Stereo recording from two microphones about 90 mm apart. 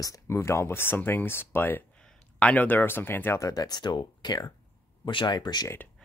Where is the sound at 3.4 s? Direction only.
45° left (ahead or behind).